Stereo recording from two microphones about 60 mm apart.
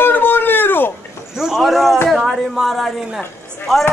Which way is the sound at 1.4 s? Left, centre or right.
Centre.